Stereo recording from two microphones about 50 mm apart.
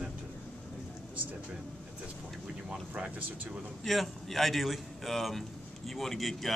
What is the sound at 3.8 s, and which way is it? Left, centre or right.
Speech, centre.